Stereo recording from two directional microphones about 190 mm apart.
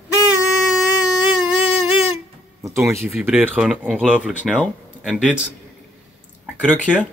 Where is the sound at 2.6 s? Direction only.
15° right (ahead or behind).